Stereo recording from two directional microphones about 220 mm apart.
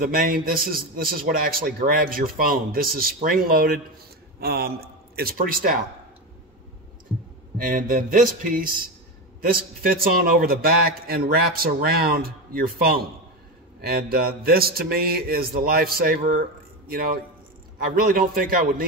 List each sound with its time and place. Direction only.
0.0 s a man's voice: 40° right (ahead or behind)
7.5 s a man's voice: 40° right (ahead or behind)